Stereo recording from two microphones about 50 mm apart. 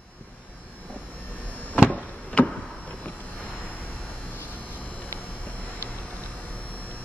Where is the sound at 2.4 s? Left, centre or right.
Left.